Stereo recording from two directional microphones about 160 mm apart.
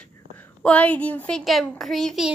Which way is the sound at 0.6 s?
10° left (ahead or behind).